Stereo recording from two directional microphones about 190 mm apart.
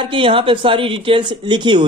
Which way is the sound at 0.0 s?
25° right (ahead or behind).